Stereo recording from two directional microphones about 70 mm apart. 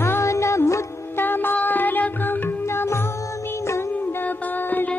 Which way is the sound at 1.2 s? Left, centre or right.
Left.